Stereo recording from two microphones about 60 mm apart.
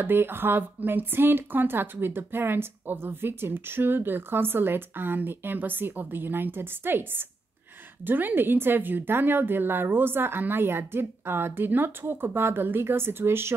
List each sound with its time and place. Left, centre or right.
0.0 s speech: right